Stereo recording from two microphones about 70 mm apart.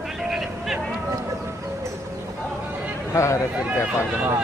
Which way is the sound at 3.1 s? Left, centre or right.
Left.